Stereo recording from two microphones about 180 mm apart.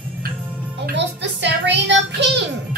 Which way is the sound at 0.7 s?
75° right (ahead or behind).